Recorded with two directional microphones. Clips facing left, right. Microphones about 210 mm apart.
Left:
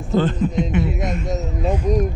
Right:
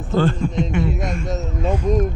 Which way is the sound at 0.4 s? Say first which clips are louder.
Left 1 dB; 5° left (ahead or behind).